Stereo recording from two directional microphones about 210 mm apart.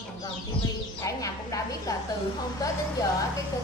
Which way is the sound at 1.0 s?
15° left (ahead or behind).